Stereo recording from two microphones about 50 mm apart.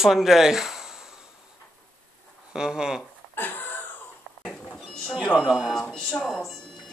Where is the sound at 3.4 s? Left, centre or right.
Left.